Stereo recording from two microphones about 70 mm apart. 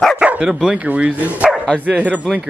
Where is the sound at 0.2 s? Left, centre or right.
Centre.